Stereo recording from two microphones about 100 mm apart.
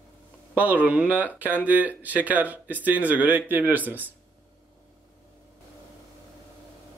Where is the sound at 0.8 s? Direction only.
15° right (ahead or behind).